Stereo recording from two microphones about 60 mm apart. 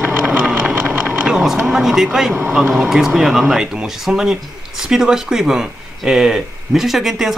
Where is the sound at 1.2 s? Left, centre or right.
Centre.